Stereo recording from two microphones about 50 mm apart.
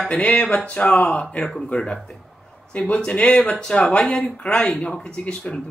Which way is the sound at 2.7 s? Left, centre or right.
Left.